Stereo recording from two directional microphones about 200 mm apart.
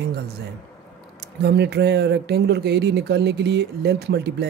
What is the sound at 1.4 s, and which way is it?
Speech, 55° right (ahead or behind).